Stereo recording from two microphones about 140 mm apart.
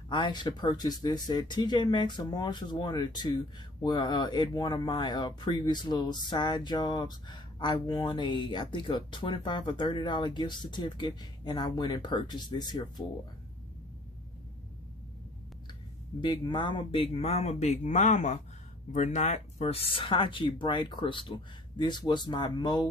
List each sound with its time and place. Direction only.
0.1 s speech: 35° left (ahead or behind)
16.2 s speech: 30° left (ahead or behind)